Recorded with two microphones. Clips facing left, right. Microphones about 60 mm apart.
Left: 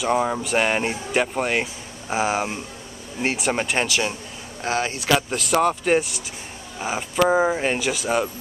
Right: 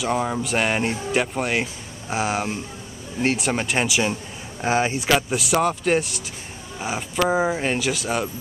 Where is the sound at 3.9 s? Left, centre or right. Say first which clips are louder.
Right 2 dB; centre.